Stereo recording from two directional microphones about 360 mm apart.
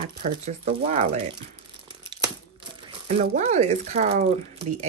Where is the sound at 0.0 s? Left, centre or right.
Centre.